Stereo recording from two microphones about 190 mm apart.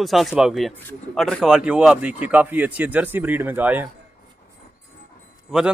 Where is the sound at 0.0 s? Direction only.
Centre (ahead or behind).